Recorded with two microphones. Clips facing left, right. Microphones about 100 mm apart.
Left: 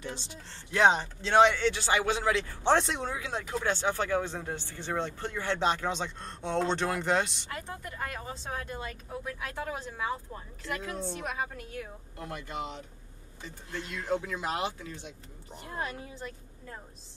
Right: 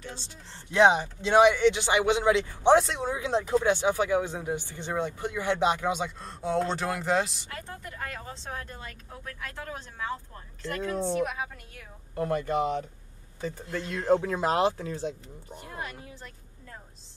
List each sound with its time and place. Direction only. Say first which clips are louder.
0.7 s speech: right 3 dB; 15° right (ahead or behind)
2.8 s a woman's voice: right 2 dB; centre (ahead or behind)
3.1 s speech: right 8 dB; 25° right (ahead or behind); by 7.4 s centre (ahead or behind)
7.6 s a woman's voice: right 1 dB; 10° left (ahead or behind)
12.2 s speech: right 11 dB; 45° right (ahead or behind)
15.7 s speech: left 3 dB; 30° left (ahead or behind)